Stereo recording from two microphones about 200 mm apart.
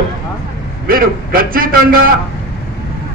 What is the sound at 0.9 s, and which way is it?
A man's voice, 45° right (ahead or behind).